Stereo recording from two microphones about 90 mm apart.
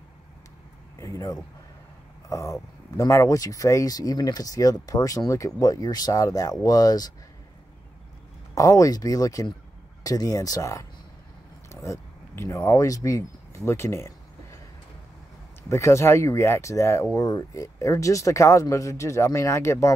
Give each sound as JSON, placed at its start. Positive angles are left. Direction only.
{"t": 0.9, "sound": "a sound", "side_deg": 40}
{"t": 2.2, "sound": "speech", "side_deg": 35}
{"t": 8.5, "sound": "speech", "side_deg": 40}
{"t": 11.7, "sound": "a sound", "side_deg": 35}
{"t": 12.6, "sound": "speech", "side_deg": 40}
{"t": 15.7, "sound": "speech", "side_deg": 30}